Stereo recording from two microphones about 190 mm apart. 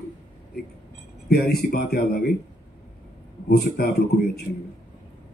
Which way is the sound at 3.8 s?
50° left (ahead or behind).